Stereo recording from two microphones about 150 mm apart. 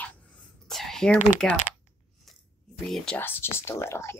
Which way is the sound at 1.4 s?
5° left (ahead or behind).